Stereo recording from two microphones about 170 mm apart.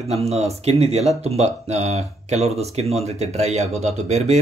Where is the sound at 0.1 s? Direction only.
35° right (ahead or behind).